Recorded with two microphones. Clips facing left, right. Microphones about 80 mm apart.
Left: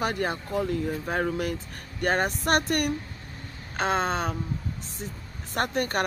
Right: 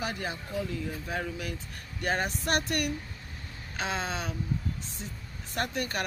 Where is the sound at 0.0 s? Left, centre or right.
Left.